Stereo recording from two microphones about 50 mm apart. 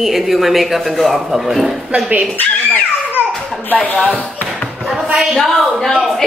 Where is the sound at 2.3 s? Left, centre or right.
Left.